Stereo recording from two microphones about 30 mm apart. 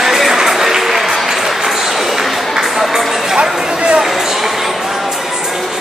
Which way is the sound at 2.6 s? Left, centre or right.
Centre.